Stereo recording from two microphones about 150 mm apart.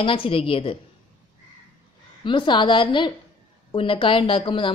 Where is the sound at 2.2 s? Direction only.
30° left (ahead or behind).